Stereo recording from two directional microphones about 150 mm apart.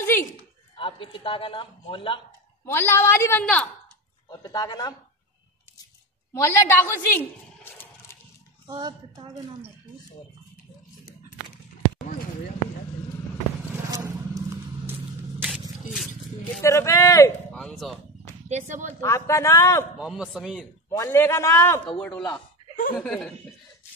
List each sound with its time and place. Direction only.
0.0 s a sound: 15° left (ahead or behind)
0.7 s a man's voice: 35° left (ahead or behind)
2.6 s a woman's voice: 15° left (ahead or behind)
4.3 s speech: 25° left (ahead or behind)
6.3 s a woman's voice: 15° left (ahead or behind)
8.7 s a woman's voice: 35° right (ahead or behind)
13.8 s vehicle: 20° right (ahead or behind)
16.6 s speech: 20° left (ahead or behind)
17.5 s speech: centre (ahead or behind)
18.5 s speech: 50° right (ahead or behind)
18.9 s speech: 20° left (ahead or behind)
20.0 s a man's voice: centre (ahead or behind)
20.9 s a woman's voice: 15° left (ahead or behind)
21.8 s a man's voice: 5° left (ahead or behind)